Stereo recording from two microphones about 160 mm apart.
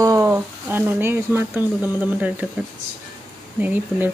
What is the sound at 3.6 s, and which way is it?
Speech, 10° right (ahead or behind).